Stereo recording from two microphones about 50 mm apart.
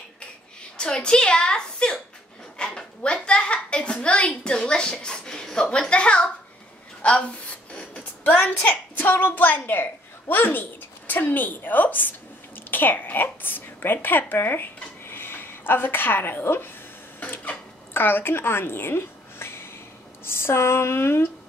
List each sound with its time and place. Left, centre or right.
0.7 s a woman's voice: centre; by 16.7 s left
17.9 s speech: left